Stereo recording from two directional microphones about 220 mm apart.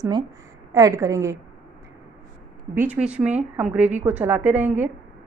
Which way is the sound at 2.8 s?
5° right (ahead or behind).